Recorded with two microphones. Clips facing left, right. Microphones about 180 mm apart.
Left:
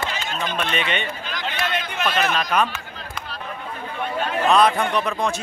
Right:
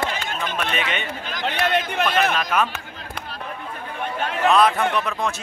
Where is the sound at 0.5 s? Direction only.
5° right (ahead or behind).